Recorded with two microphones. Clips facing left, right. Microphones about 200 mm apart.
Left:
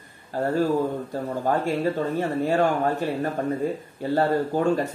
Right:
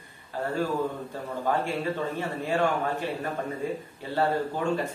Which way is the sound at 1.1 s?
45° left (ahead or behind).